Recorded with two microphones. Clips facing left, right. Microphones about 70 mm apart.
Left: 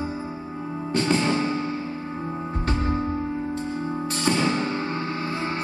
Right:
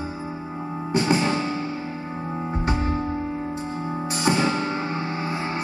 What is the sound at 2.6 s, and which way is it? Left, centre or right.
Music, centre.